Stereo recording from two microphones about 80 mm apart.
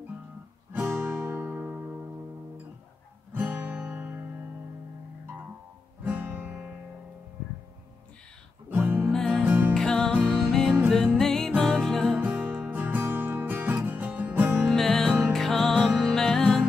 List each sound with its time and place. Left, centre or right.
0.8 s music: right
3.3 s guitar: right
6.0 s guitar: right
8.6 s music: right
9.1 s music: centre
9.4 s music: right
9.8 s music: centre
12.2 s music: centre
14.7 s music: centre